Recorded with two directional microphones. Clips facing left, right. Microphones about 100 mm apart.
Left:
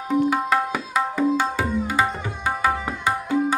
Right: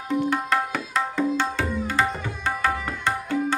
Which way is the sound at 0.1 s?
5° left (ahead or behind).